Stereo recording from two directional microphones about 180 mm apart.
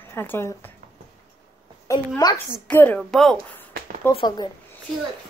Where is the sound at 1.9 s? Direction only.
20° left (ahead or behind).